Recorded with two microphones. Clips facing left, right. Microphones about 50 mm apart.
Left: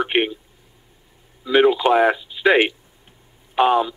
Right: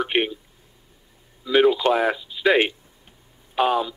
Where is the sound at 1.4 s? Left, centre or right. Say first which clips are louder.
Left 2 dB; centre.